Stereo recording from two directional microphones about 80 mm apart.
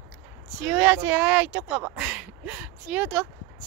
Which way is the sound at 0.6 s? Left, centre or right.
Centre.